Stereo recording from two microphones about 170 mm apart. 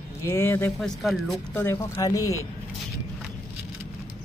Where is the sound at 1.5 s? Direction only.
15° left (ahead or behind).